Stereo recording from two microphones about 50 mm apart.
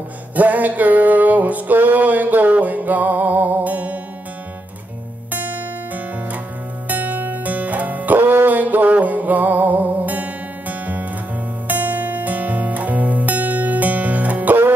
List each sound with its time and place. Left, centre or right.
0.4 s music: right
5.3 s music: right
6.9 s music: right
8.2 s music: right